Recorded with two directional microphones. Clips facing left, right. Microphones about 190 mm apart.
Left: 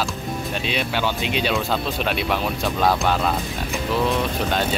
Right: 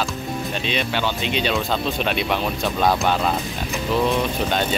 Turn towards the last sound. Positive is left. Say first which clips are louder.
# even
turn(degrees=0)  # may be behind; listen again after turning